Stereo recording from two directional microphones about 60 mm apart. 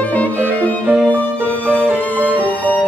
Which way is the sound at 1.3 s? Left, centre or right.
Right.